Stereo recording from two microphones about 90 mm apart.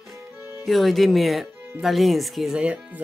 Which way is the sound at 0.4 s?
25° right (ahead or behind).